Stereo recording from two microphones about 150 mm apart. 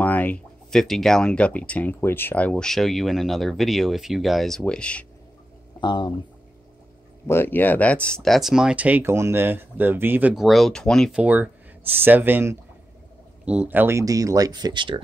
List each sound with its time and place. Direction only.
0.0 s speech: 10° left (ahead or behind)
5.8 s speech: 30° left (ahead or behind)
7.2 s speech: 15° left (ahead or behind)
11.1 s speech: 10° right (ahead or behind); by 15.0 s 30° right (ahead or behind)